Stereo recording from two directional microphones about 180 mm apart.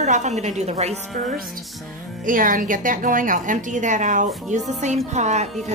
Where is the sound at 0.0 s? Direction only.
40° right (ahead or behind).